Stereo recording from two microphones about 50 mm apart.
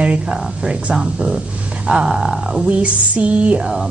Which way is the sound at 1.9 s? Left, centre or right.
Centre.